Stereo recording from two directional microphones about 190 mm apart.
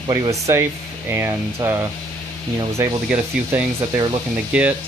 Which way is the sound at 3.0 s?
5° right (ahead or behind).